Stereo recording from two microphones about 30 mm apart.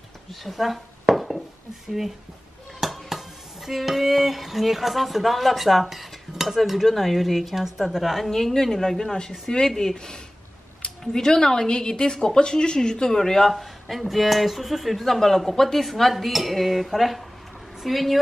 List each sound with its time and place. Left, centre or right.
0.3 s dishes: centre
2.9 s a sound: centre
8.3 s a woman's voice: centre
9.9 s speech: left
13.5 s a woman's voice: centre